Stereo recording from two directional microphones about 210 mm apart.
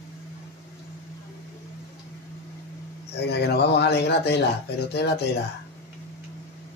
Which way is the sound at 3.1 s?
50° left (ahead or behind).